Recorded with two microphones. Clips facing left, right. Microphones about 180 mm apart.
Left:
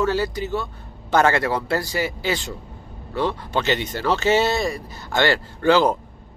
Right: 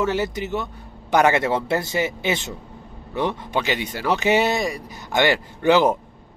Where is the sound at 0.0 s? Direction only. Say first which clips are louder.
Left 1 dB; 20° right (ahead or behind).